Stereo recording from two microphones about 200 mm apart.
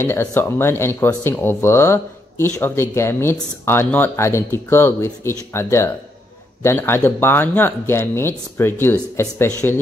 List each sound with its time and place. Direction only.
0.0 s speech: 10° left (ahead or behind)